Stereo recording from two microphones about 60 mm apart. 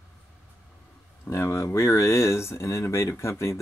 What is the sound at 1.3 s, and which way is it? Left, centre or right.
Speech, left.